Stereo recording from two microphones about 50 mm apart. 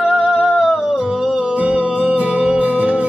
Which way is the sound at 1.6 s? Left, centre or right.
Right.